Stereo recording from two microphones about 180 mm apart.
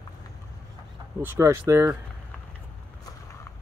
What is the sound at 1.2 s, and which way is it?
Speech, 15° right (ahead or behind).